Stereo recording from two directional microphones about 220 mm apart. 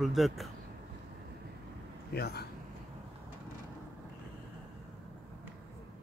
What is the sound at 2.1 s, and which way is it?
Speech, 45° left (ahead or behind).